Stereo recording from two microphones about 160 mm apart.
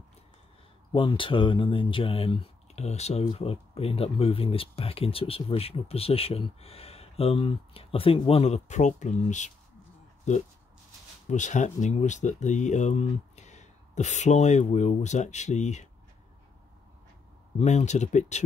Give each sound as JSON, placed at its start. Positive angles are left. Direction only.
{"t": 0.9, "sound": "speech", "side_deg": 30}
{"t": 17.6, "sound": "speech", "side_deg": 45}